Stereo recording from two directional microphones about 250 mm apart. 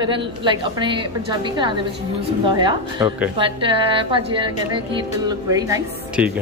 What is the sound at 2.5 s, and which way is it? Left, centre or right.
A woman's voice, centre.